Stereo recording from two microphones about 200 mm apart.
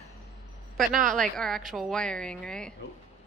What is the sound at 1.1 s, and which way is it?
A woman's voice, centre (ahead or behind).